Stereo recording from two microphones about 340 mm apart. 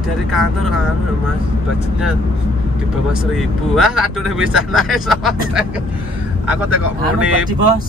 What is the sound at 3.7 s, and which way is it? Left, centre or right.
Speech, centre.